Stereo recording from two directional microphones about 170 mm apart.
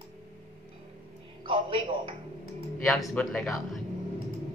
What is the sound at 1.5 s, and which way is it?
Speech, 30° right (ahead or behind).